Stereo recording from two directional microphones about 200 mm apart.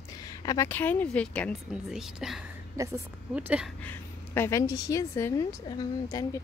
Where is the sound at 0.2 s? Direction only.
20° left (ahead or behind); by 2.4 s 5° right (ahead or behind).